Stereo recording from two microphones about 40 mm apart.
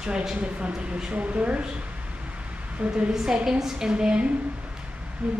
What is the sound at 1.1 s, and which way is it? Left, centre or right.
Speech, right.